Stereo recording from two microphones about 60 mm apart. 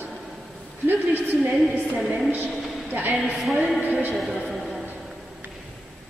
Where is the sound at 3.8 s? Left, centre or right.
Right.